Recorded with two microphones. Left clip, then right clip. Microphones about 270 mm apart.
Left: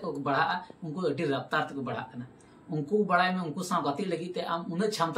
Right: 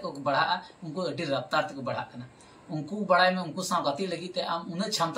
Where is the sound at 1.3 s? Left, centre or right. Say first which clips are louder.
Right 2 dB; centre.